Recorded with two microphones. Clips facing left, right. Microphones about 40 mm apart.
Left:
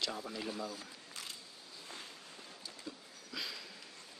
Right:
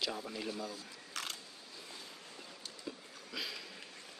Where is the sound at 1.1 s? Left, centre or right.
Right.